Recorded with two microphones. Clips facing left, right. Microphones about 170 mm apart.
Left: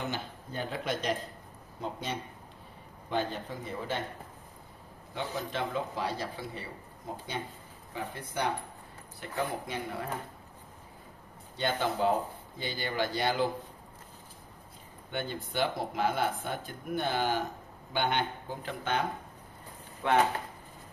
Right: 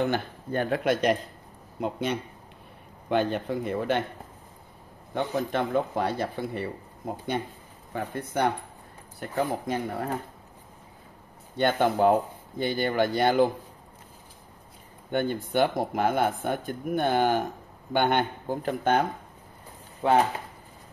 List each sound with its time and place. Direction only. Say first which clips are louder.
0.0 s a man's voice: right 10 dB; 60° right (ahead or behind)
5.1 s speech: right 8 dB; 55° right (ahead or behind)
11.5 s speech: right 7 dB; 55° right (ahead or behind)
15.0 s speech: right 9 dB; 50° right (ahead or behind)
20.0 s speech: right 5 dB; 30° right (ahead or behind)